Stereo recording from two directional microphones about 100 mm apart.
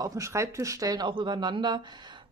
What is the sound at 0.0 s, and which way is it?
Speech, 35° right (ahead or behind).